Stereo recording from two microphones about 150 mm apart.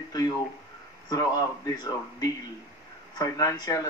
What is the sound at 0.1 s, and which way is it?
Speech, 25° left (ahead or behind).